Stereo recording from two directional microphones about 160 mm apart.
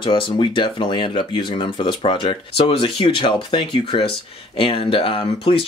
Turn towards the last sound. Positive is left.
turn(degrees=35)  # may be behind; listen again after turning